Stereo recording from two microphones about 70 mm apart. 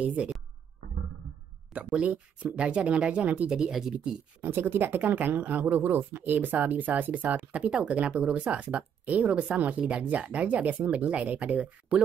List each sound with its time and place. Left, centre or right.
0.0 s speech: centre
1.7 s speech: centre
4.4 s speech: right